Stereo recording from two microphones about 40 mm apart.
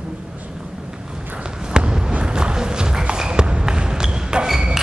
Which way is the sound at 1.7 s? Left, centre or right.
Right.